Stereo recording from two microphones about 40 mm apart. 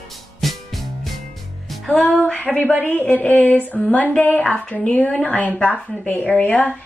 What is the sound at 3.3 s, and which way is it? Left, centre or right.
A woman's voice, left.